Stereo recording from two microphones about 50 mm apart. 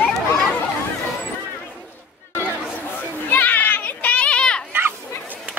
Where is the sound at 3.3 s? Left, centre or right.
Left.